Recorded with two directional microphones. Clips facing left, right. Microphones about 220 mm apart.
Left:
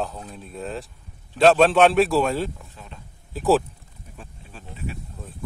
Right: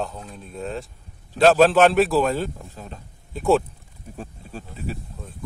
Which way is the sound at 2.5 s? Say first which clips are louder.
Right 5 dB; 40° right (ahead or behind).